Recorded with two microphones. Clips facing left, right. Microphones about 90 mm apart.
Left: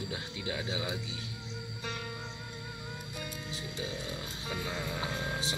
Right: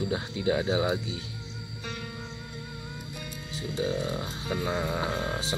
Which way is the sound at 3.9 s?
35° right (ahead or behind).